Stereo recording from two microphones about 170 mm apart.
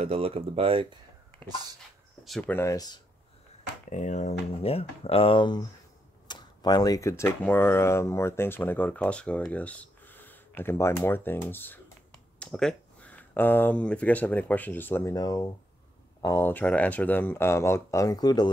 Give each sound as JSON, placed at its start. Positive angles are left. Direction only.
{"t": 0.0, "sound": "speech", "side_deg": -35}
{"t": 2.2, "sound": "speech", "side_deg": 5}
{"t": 3.9, "sound": "speech", "side_deg": 45}